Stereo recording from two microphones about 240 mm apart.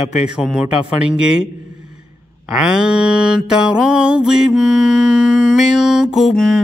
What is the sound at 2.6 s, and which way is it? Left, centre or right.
Mantra, centre.